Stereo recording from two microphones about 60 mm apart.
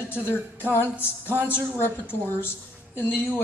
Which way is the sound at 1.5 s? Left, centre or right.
Left.